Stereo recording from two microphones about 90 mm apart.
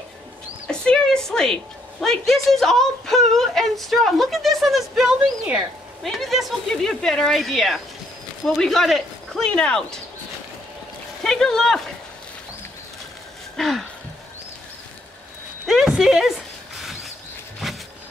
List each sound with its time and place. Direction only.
0.7 s a woman's voice: 10° left (ahead or behind)
11.2 s a woman's voice: 5° left (ahead or behind)
13.6 s a woman's voice: centre (ahead or behind)
15.6 s a sound: 5° right (ahead or behind)